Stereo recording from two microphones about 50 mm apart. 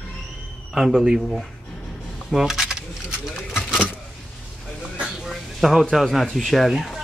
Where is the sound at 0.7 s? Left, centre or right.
Centre.